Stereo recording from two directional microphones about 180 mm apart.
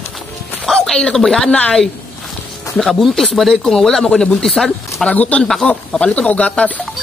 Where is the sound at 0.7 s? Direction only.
5° left (ahead or behind).